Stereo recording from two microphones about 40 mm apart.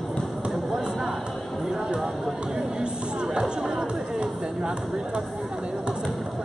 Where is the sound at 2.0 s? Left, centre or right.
Centre.